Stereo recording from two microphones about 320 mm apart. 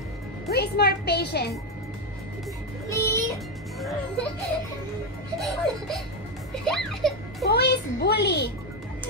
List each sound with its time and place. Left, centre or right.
0.5 s a child's voice: left
2.9 s music: centre
5.4 s a child's voice: centre
7.4 s a child's voice: left